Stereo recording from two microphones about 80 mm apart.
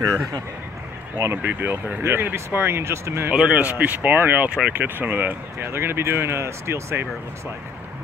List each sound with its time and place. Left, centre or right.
1.1 s speech: right
3.3 s speech: centre; by 7.1 s right